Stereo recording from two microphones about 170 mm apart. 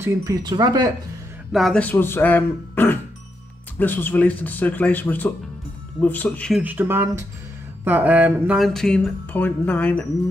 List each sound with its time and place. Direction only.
0.0 s speech: 20° right (ahead or behind)
1.5 s speech: centre (ahead or behind)
6.6 s a sound: 10° right (ahead or behind)
8.6 s speech: 5° left (ahead or behind)